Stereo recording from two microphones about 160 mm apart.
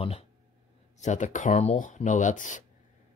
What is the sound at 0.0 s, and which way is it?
Speech, 40° left (ahead or behind).